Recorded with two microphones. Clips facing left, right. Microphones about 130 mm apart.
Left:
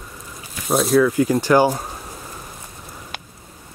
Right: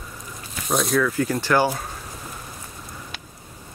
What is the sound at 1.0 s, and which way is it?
Speech, 15° left (ahead or behind).